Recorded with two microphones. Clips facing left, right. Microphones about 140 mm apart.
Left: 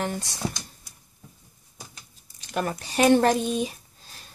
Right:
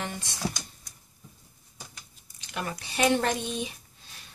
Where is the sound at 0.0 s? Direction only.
40° left (ahead or behind).